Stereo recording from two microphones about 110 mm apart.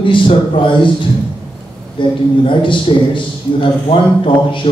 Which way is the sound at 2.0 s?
50° left (ahead or behind).